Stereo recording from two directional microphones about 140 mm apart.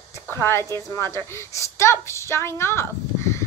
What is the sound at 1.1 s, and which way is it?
A woman's voice, 20° left (ahead or behind).